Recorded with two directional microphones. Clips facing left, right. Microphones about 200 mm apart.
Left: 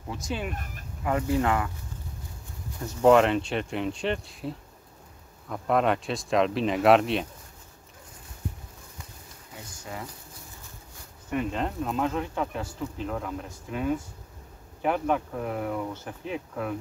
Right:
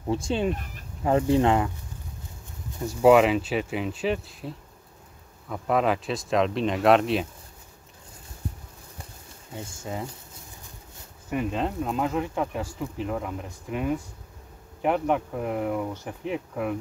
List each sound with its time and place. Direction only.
0.1 s speech: 30° right (ahead or behind)
2.9 s speech: 5° right (ahead or behind)
9.5 s speech: 25° right (ahead or behind)
11.2 s speech: 5° right (ahead or behind)